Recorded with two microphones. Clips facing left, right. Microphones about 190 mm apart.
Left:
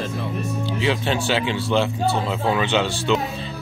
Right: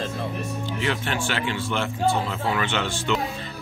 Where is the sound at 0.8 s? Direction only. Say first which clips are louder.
Left 5 dB; 15° left (ahead or behind).